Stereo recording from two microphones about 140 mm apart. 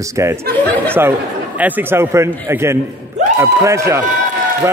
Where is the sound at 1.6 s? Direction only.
10° right (ahead or behind).